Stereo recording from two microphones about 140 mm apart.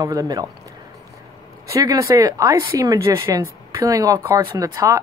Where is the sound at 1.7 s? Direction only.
25° right (ahead or behind).